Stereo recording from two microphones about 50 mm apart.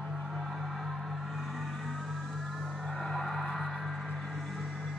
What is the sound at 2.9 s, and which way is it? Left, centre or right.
Music, centre.